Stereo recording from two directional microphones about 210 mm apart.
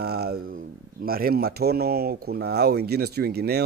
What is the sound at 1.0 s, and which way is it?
Speech, 45° right (ahead or behind).